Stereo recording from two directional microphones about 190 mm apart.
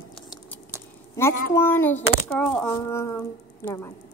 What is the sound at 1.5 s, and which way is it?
Speech, 10° left (ahead or behind).